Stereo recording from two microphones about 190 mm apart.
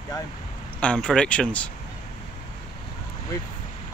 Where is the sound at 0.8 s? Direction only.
5° left (ahead or behind).